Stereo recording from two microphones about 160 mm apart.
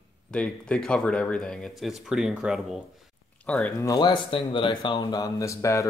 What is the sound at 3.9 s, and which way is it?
Speech, 25° left (ahead or behind).